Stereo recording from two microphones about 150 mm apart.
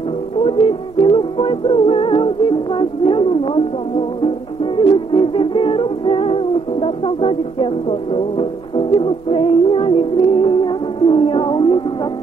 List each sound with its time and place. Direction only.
0.4 s music: 40° left (ahead or behind)